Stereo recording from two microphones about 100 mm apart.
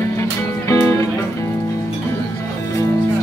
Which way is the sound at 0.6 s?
30° left (ahead or behind).